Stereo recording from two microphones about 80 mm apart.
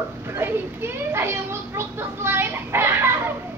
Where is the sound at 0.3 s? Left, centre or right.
Right.